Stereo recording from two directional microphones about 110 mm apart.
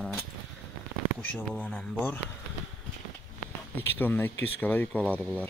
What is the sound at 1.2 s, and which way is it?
Speech, 15° left (ahead or behind).